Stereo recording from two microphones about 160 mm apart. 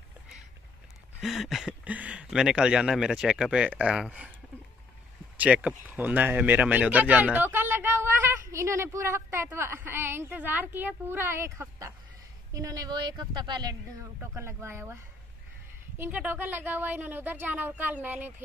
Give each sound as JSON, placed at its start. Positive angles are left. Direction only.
{"t": 1.2, "sound": "speech", "side_deg": 0}
{"t": 5.4, "sound": "a woman's voice", "side_deg": -5}
{"t": 16.0, "sound": "speech", "side_deg": -10}